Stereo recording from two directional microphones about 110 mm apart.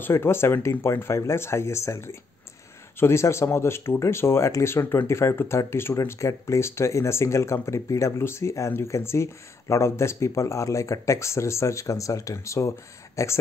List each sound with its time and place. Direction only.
0.0 s speech: 20° left (ahead or behind)